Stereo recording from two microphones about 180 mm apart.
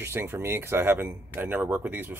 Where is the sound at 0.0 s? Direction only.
15° right (ahead or behind).